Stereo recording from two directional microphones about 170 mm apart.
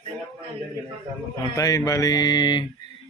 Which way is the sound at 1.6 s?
20° left (ahead or behind).